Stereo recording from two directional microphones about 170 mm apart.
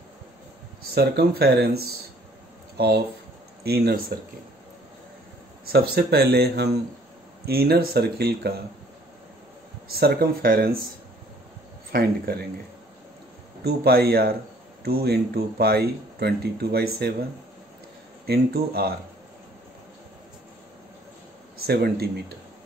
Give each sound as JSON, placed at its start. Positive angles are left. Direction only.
{"t": 0.9, "sound": "speech", "side_deg": -70}
{"t": 3.6, "sound": "speech", "side_deg": -65}
{"t": 5.7, "sound": "speech", "side_deg": -65}
{"t": 9.8, "sound": "speech", "side_deg": -65}
{"t": 11.9, "sound": "speech", "side_deg": -60}
{"t": 13.7, "sound": "speech", "side_deg": -70}
{"t": 18.2, "sound": "speech", "side_deg": -70}
{"t": 21.6, "sound": "speech", "side_deg": -65}